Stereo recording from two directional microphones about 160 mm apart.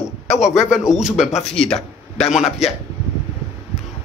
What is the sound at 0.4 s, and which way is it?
Speech, 5° right (ahead or behind).